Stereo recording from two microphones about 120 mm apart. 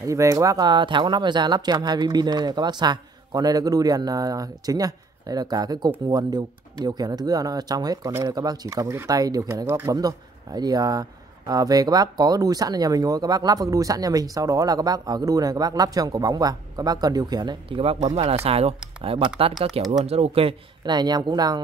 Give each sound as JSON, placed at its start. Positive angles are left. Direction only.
{"t": 0.0, "sound": "speech", "side_deg": -25}
{"t": 20.8, "sound": "speech", "side_deg": -35}